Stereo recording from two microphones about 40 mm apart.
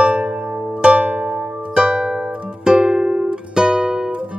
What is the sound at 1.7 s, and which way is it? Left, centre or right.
Music, right.